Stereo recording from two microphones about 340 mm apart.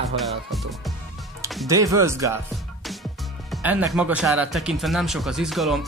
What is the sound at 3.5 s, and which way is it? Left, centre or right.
Speech, centre.